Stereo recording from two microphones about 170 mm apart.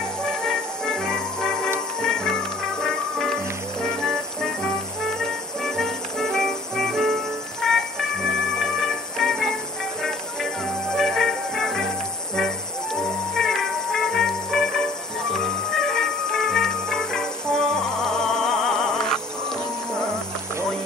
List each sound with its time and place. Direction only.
0.2 s music: 5° left (ahead or behind)
7.6 s train: centre (ahead or behind)
8.5 s music: centre (ahead or behind)
11.0 s music: centre (ahead or behind)